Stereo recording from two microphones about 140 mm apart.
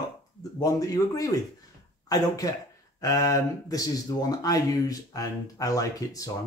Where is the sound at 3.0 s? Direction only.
25° left (ahead or behind).